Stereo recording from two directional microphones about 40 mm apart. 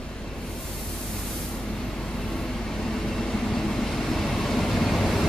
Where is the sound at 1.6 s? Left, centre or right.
Centre.